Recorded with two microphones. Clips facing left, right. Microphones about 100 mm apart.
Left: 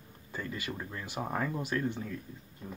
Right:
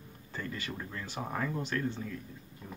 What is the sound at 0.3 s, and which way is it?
Speech, 15° left (ahead or behind).